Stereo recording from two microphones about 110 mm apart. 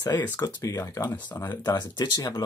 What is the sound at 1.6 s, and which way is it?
Speech, 35° left (ahead or behind).